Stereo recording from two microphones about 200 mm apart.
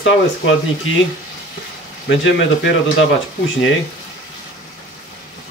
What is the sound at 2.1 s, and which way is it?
Speech, 65° left (ahead or behind).